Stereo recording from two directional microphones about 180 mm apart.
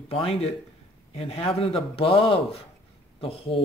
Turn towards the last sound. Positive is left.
turn(degrees=30)  # may be behind; listen again after turning